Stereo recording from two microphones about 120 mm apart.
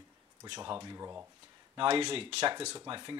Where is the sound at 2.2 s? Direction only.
55° right (ahead or behind).